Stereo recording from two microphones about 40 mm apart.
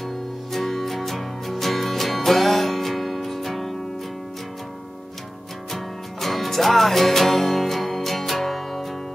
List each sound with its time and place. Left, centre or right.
0.5 s music: centre
6.2 s music: centre